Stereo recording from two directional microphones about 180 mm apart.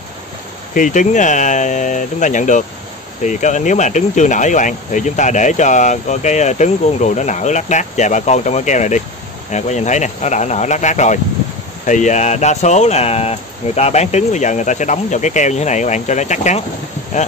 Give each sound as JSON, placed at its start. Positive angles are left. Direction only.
{"t": 0.7, "sound": "speech", "side_deg": 45}